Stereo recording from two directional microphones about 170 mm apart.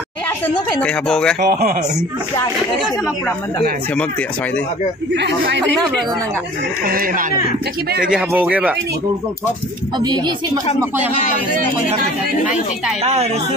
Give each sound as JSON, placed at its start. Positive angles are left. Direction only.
{"t": 0.8, "sound": "speech", "side_deg": 5}
{"t": 1.4, "sound": "speech", "side_deg": -60}
{"t": 5.1, "sound": "a man's voice", "side_deg": -90}
{"t": 6.9, "sound": "speech", "side_deg": -60}
{"t": 8.1, "sound": "speech", "side_deg": -10}
{"t": 9.9, "sound": "speech", "side_deg": -25}
{"t": 13.0, "sound": "a woman's voice", "side_deg": -40}